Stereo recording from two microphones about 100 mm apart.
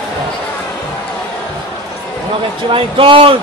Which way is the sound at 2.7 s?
60° right (ahead or behind).